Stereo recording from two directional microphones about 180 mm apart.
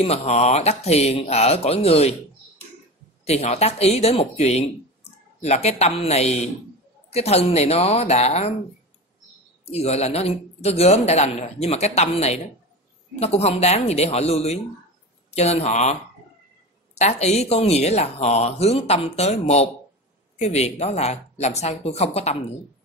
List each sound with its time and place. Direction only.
0.0 s speech: 35° left (ahead or behind)
3.3 s speech: 35° left (ahead or behind)
9.7 s speech: 35° left (ahead or behind)